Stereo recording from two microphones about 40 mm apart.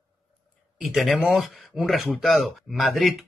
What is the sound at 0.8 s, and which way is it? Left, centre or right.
Speech, centre.